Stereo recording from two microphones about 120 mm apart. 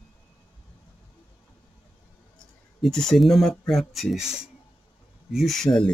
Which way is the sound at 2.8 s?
5° left (ahead or behind).